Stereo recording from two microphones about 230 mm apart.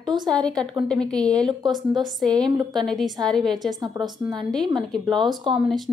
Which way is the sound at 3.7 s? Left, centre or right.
Centre.